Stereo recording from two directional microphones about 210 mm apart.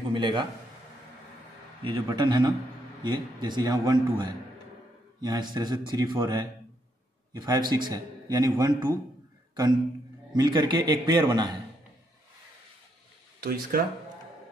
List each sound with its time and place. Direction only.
0.1 s a man's voice: 20° right (ahead or behind)
1.9 s a man's voice: 20° right (ahead or behind)
10.3 s a man's voice: 20° right (ahead or behind)
13.4 s speech: 45° right (ahead or behind)